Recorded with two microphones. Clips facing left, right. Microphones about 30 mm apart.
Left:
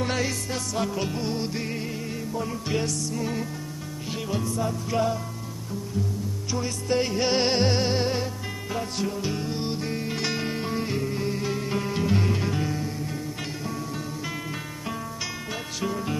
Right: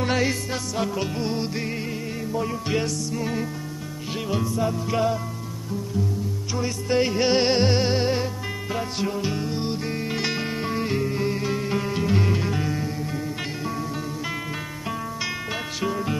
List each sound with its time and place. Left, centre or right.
0.0 s music: centre
6.5 s music: centre
9.3 s music: centre
15.8 s music: centre